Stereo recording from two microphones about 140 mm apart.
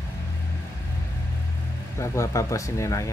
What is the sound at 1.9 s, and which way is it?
Speech, 20° left (ahead or behind).